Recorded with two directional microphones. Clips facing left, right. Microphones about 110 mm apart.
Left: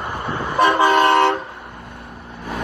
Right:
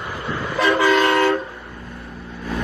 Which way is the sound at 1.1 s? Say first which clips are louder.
Left 2 dB; 25° left (ahead or behind).